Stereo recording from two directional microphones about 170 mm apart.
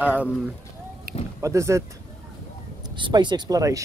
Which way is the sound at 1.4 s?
15° right (ahead or behind).